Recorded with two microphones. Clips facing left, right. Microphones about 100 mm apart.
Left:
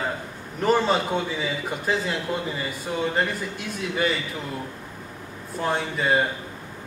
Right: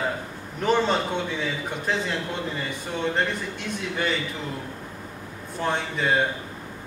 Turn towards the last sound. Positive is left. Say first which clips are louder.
# left 1 dB
turn(degrees=5)  # may be behind; listen again after turning